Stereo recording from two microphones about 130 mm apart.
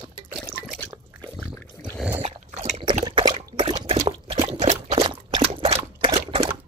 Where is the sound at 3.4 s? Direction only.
50° right (ahead or behind).